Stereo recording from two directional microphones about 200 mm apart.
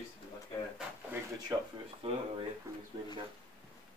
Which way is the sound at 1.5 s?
20° right (ahead or behind).